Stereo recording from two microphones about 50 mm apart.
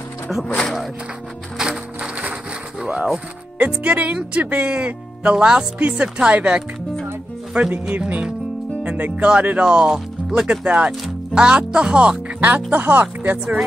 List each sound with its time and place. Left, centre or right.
2.8 s speech: centre
3.5 s speech: right
8.8 s speech: right
9.7 s speech: centre
12.4 s speech: right